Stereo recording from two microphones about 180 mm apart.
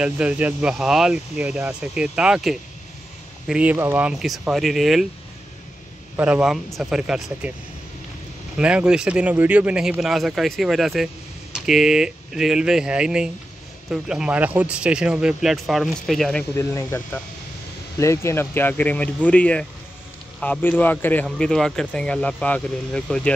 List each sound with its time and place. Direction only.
0.0 s speech: 5° right (ahead or behind)
6.1 s speech: 5° right (ahead or behind)
8.5 s speech: 5° right (ahead or behind)
16.5 s speech: 15° left (ahead or behind)